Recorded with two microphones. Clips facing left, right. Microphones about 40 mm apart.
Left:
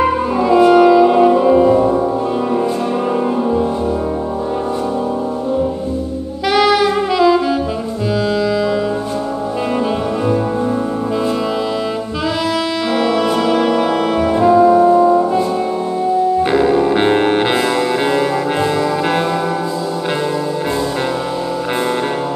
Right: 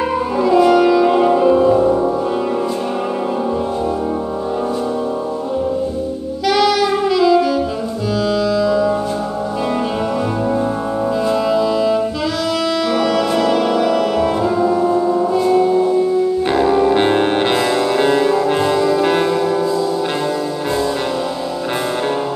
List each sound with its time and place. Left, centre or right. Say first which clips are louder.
0.4 s music: left 2 dB; centre
1.0 s music: left 2 dB; centre
6.5 s saxophone: left 2 dB; centre
8.3 s music: right 2 dB; centre
12.9 s music: left 3 dB; centre
18.8 s brass instrument: right 2 dB; centre